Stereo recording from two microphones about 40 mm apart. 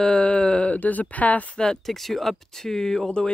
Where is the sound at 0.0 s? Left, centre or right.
Left.